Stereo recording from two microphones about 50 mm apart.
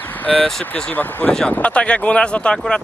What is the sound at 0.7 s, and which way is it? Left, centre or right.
Speech, left.